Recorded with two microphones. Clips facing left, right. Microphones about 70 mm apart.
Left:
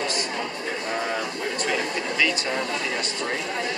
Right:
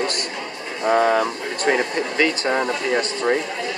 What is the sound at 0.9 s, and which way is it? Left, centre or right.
Speech, right.